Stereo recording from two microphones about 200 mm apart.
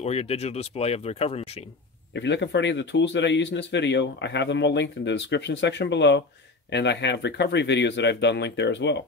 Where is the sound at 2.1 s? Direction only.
60° left (ahead or behind).